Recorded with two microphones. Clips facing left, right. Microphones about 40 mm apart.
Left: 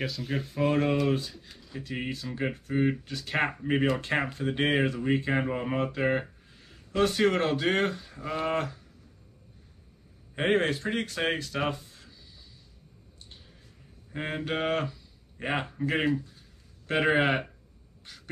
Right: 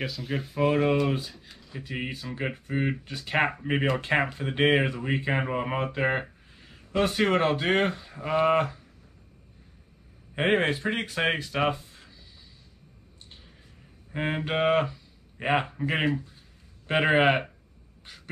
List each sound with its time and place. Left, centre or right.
0.0 s speech: centre
10.3 s speech: centre
14.1 s speech: centre
18.0 s duck: centre